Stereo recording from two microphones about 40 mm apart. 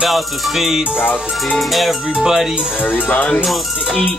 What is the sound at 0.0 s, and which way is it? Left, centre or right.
Music, centre.